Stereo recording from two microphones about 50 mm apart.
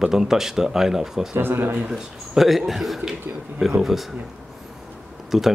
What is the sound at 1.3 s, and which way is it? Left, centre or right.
Speech, right.